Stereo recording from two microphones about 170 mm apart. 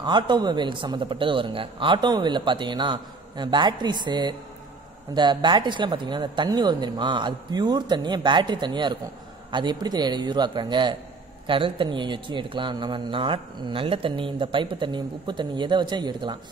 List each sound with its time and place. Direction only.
0.0 s a man's voice: 25° right (ahead or behind)